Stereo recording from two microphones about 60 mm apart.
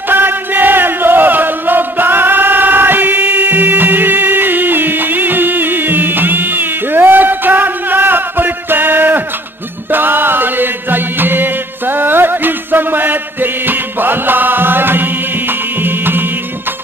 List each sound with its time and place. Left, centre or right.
0.1 s chant: right